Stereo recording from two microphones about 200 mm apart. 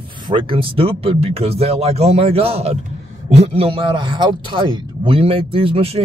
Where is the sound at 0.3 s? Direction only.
25° right (ahead or behind).